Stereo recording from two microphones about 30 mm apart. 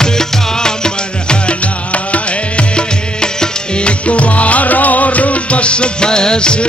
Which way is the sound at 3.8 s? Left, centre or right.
Left.